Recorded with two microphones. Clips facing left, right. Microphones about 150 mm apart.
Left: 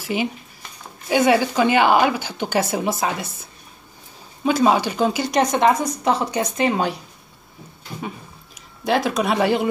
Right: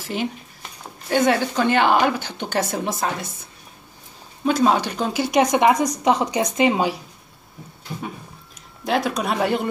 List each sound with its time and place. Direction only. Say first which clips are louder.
0.0 s speech: left 2 dB; 5° left (ahead or behind)
4.5 s speech: left 1 dB; 5° left (ahead or behind)
5.2 s a woman's voice: right 3 dB; 10° right (ahead or behind)
8.8 s speech: left 2 dB; centre (ahead or behind)